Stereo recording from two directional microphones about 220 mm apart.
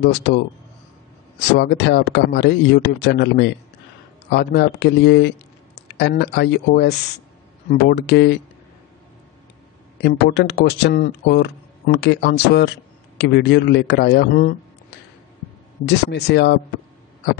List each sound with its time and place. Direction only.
0.0 s speech: 50° left (ahead or behind)
1.6 s speech: 50° left (ahead or behind)
10.0 s speech: 50° left (ahead or behind)